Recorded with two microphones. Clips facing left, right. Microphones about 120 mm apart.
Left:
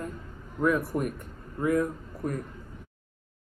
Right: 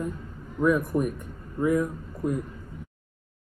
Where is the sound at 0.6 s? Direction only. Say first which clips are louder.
Right 3 dB; 15° right (ahead or behind).